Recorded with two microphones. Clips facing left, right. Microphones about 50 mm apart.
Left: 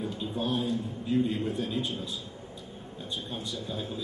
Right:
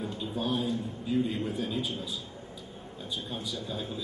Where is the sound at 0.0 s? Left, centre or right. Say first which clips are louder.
Left 1 dB; centre.